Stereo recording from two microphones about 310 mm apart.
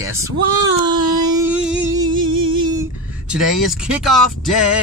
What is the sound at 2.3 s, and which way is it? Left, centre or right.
Music, right.